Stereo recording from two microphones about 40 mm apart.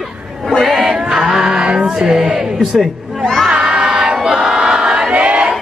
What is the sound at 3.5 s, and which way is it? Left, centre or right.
Crowd, centre.